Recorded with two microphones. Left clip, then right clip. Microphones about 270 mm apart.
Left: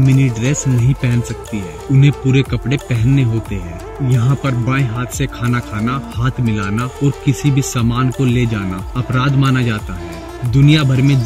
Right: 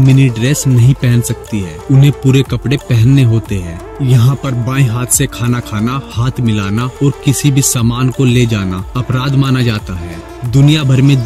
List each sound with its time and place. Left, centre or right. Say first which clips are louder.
0.0 s speech: right 4 dB; centre
4.4 s speech: right 1 dB; centre